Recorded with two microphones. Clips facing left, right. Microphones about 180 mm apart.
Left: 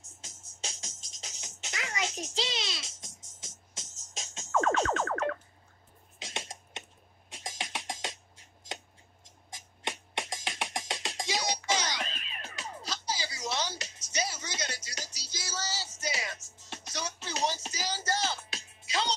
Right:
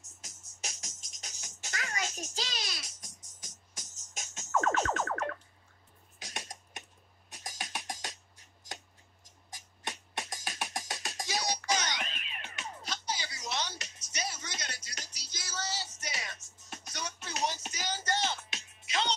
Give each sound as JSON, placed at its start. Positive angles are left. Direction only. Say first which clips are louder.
{"t": 0.2, "sound": "music", "louder": "left 2 dB", "side_deg": 30}
{"t": 6.1, "sound": "a sound", "louder": "left 3 dB", "side_deg": 25}
{"t": 7.2, "sound": "music", "louder": "left 3 dB", "side_deg": 25}
{"t": 9.8, "sound": "music", "louder": "left 3 dB", "side_deg": 25}
{"t": 14.3, "sound": "music", "louder": "left 5 dB", "side_deg": 90}
{"t": 17.2, "sound": "music", "louder": "left 2 dB", "side_deg": 30}